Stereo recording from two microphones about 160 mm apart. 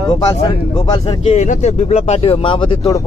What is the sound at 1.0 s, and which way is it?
A man's voice, 40° left (ahead or behind).